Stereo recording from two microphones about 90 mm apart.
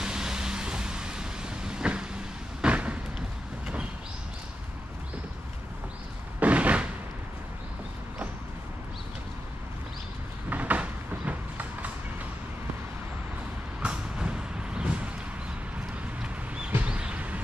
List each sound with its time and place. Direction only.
0.0 s vehicle: 5° right (ahead or behind)
6.4 s slam: 15° right (ahead or behind)
10.5 s train: 15° right (ahead or behind)
13.8 s vehicle: 10° right (ahead or behind)
16.2 s a sound: 10° right (ahead or behind)